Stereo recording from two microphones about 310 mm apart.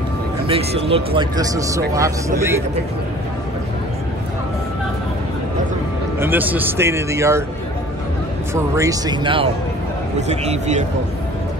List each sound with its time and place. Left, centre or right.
0.5 s speech: centre
6.1 s speech: centre
8.5 s speech: centre